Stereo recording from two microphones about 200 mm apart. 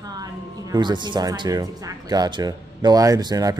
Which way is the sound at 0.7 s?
20° right (ahead or behind).